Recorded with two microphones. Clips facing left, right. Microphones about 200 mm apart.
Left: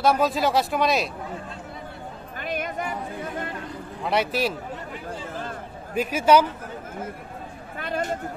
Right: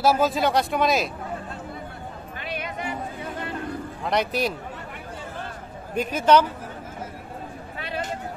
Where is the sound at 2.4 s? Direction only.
45° left (ahead or behind).